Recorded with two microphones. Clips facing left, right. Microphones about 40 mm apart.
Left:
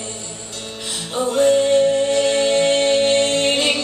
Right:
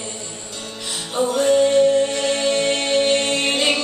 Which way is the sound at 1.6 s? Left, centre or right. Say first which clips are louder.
Right 1 dB; left.